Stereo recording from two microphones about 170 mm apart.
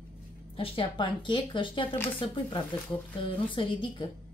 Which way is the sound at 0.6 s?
30° left (ahead or behind).